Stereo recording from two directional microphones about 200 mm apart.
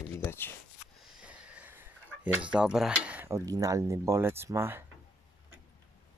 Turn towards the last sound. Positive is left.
turn(degrees=-10)  # may be behind; listen again after turning